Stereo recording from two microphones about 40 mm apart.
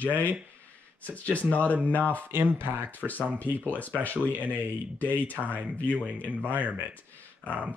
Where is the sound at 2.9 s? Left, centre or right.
Left.